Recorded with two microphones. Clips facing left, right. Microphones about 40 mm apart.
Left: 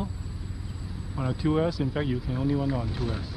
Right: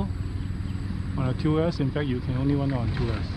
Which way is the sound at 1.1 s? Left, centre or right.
Centre.